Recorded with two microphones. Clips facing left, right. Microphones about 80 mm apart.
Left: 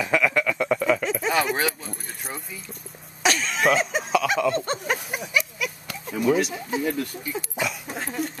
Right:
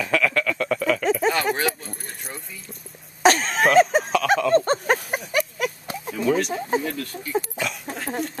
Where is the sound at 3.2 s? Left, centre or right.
Right.